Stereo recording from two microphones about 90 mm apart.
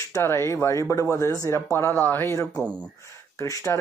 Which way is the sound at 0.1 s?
30° left (ahead or behind).